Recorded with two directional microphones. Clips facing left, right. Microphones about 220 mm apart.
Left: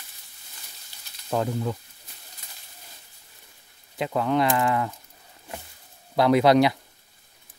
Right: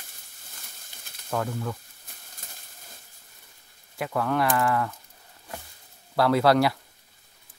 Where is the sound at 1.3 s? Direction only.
20° left (ahead or behind).